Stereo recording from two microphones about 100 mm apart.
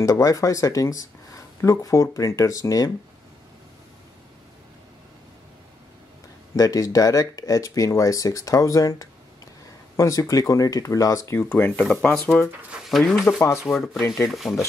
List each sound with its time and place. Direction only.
0.0 s speech: 35° left (ahead or behind)
6.5 s speech: 35° left (ahead or behind)
11.3 s speech: 15° left (ahead or behind)
12.7 s a sound: 10° right (ahead or behind)
13.3 s speech: 15° left (ahead or behind)
14.1 s speech: centre (ahead or behind)